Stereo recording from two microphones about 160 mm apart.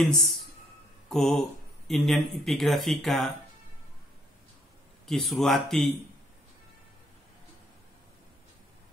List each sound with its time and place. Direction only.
0.0 s speech: centre (ahead or behind)
5.0 s speech: centre (ahead or behind)